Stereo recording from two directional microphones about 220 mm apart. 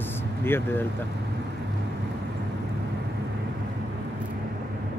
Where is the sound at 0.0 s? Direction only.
10° left (ahead or behind).